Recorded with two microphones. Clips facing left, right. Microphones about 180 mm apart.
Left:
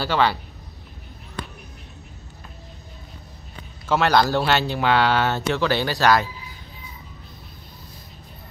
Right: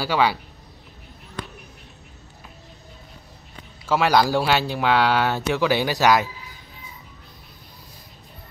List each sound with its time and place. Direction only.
0.0 s speech: 10° right (ahead or behind)
3.8 s speech: 10° right (ahead or behind)